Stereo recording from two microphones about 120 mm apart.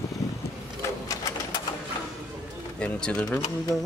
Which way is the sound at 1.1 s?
30° left (ahead or behind).